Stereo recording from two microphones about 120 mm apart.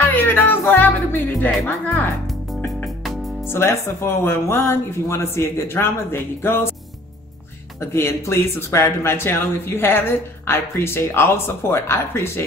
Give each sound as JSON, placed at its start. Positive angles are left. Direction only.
{"t": 0.1, "sound": "speech", "side_deg": 15}
{"t": 3.4, "sound": "speech", "side_deg": 20}
{"t": 7.9, "sound": "speech", "side_deg": 20}